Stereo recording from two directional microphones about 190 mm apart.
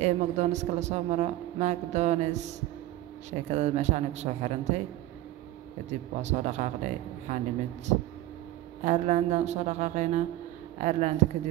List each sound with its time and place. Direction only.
0.0 s a woman's voice: 35° right (ahead or behind)
5.9 s a woman's voice: 35° right (ahead or behind)
8.8 s a woman's voice: 40° right (ahead or behind)